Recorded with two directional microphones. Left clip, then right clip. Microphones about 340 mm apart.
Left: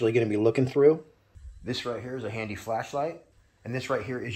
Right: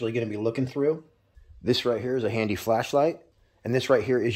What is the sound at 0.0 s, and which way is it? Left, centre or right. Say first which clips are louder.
Speech: left 4 dB; centre.